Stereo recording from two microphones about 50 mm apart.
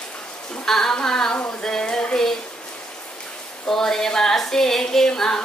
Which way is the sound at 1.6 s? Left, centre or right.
Centre.